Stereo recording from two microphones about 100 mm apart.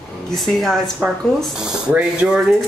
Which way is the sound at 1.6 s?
10° right (ahead or behind).